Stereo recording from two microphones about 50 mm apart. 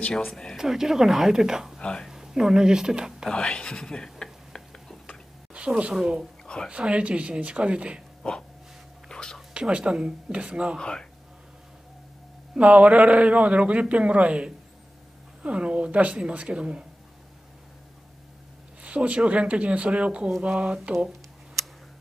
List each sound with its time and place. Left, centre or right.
0.6 s speech: centre
1.8 s speech: centre
2.0 s speech: centre
3.3 s a sound: left
5.5 s a sound: right
6.4 s a sound: centre
6.7 s a man's voice: right
8.2 s a sound: centre
9.1 s whispering: centre
9.5 s a man's voice: right
10.8 s speech: centre
12.5 s a man's voice: right
18.8 s a man's voice: right